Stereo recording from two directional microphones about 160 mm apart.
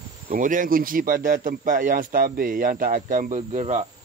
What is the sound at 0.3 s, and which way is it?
Speech, 55° right (ahead or behind).